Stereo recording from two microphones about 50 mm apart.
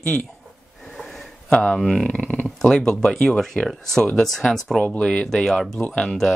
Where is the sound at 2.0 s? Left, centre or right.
Left; by 4.8 s centre.